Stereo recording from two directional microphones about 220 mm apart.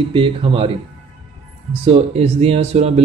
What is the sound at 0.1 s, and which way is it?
Speech, 25° right (ahead or behind).